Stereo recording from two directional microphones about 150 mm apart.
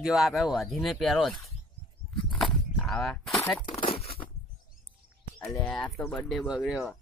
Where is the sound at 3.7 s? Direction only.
40° left (ahead or behind).